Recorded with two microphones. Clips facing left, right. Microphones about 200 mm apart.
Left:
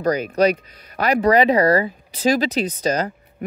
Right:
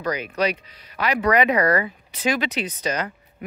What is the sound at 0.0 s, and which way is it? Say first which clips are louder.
Speech: left 6 dB; 40° left (ahead or behind).